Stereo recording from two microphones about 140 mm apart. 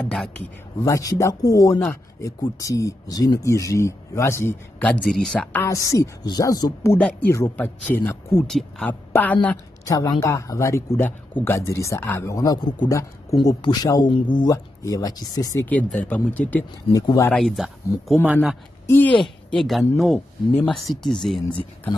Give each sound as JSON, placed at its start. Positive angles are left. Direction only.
{"t": 0.8, "sound": "speech", "side_deg": 25}
{"t": 5.6, "sound": "speech", "side_deg": 20}
{"t": 7.0, "sound": "speech", "side_deg": 5}
{"t": 8.5, "sound": "speech", "side_deg": 0}
{"t": 9.8, "sound": "speech", "side_deg": 25}
{"t": 15.6, "sound": "speech", "side_deg": 10}
{"t": 16.9, "sound": "speech", "side_deg": 25}
{"t": 17.3, "sound": "speech", "side_deg": 0}
{"t": 18.9, "sound": "speech", "side_deg": 15}
{"t": 19.1, "sound": "speech", "side_deg": 0}